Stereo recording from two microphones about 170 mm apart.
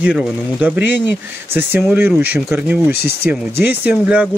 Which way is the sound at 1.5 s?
15° right (ahead or behind).